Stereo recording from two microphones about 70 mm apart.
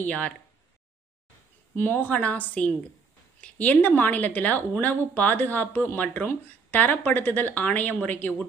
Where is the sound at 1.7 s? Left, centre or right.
Left.